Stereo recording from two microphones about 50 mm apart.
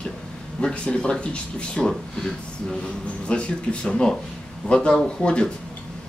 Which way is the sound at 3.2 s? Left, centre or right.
Left.